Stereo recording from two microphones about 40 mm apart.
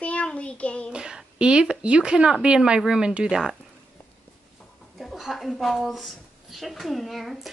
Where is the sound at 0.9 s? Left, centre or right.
Right.